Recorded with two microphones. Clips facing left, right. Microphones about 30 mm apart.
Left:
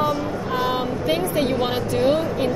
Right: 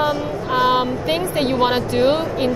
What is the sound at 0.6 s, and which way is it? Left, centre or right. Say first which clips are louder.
Speech: right 7 dB; right.